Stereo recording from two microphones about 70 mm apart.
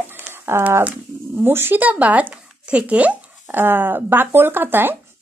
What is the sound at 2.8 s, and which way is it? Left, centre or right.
Speech, right.